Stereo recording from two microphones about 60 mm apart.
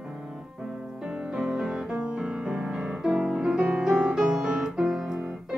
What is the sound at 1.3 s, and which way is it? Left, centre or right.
Music, centre.